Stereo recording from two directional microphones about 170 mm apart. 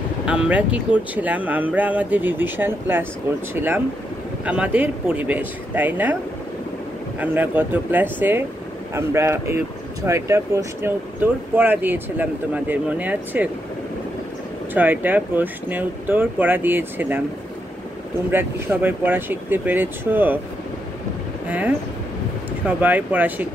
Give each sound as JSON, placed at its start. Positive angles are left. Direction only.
{"t": 0.2, "sound": "speech", "side_deg": -5}
{"t": 7.2, "sound": "speech", "side_deg": -10}
{"t": 14.7, "sound": "speech", "side_deg": -10}
{"t": 18.3, "sound": "speech", "side_deg": -10}
{"t": 21.5, "sound": "speech", "side_deg": -10}